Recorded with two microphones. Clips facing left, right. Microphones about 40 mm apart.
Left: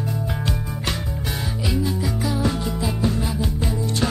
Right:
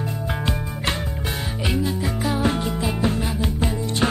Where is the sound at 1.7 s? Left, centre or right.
Right.